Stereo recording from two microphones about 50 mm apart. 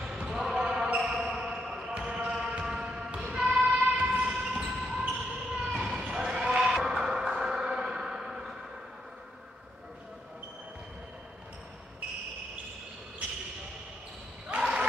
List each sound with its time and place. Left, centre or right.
0.2 s basketball bounce: centre
3.7 s basketball bounce: right
14.6 s a sound: centre